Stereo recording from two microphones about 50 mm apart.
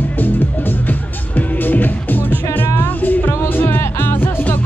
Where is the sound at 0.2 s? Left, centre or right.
Left.